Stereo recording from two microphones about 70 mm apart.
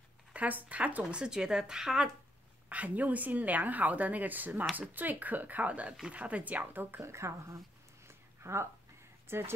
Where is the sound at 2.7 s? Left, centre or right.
Right.